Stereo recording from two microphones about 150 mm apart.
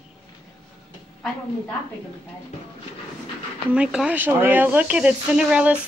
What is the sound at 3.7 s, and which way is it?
Speech, 10° right (ahead or behind).